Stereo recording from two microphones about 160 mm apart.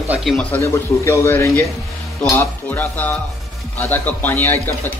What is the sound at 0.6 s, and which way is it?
A man's voice, 20° left (ahead or behind).